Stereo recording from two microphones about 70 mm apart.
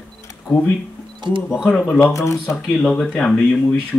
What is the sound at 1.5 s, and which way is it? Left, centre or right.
Speech, centre.